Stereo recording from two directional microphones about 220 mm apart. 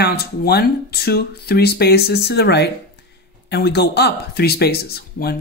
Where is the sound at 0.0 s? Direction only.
45° left (ahead or behind).